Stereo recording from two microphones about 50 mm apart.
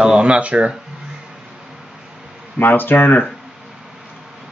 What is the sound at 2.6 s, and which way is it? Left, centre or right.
Speech, left.